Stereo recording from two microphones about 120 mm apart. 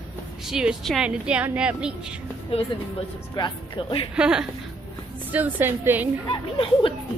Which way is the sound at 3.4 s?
40° left (ahead or behind).